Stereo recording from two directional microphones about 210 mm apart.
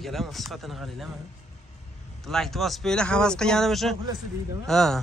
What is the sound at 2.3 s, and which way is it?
Speech, centre (ahead or behind).